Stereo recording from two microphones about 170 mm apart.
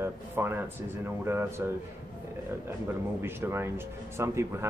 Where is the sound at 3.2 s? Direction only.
15° right (ahead or behind).